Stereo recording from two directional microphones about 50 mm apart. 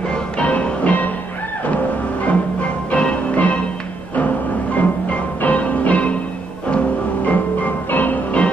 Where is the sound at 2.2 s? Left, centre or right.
Left.